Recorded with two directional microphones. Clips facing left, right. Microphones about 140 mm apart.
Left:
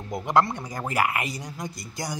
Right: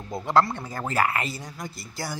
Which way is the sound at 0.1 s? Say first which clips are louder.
Even; 20° left (ahead or behind).